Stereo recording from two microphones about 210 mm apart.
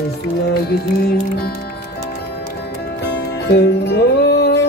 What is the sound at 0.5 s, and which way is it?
Music, 50° left (ahead or behind).